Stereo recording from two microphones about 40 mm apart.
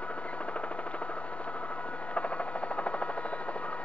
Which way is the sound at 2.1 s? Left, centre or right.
Left.